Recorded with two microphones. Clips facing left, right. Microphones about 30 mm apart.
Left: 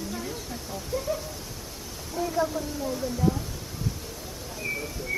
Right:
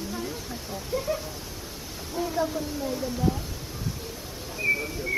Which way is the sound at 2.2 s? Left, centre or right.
Centre.